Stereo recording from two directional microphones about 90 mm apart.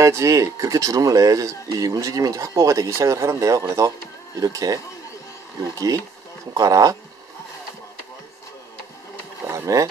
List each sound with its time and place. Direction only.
0.0 s speech: 35° right (ahead or behind)
6.5 s speech: 45° right (ahead or behind)
9.5 s a sound: 40° right (ahead or behind)